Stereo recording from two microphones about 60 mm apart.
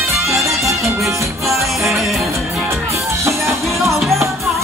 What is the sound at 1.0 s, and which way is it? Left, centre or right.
Music, right.